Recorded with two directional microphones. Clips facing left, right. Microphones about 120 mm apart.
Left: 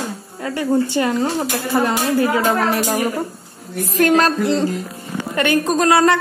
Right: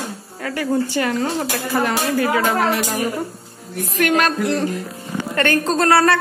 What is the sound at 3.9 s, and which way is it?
Speech, 35° left (ahead or behind).